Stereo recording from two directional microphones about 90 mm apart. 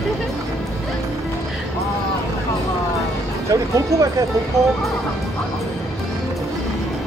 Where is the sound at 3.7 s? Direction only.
35° right (ahead or behind).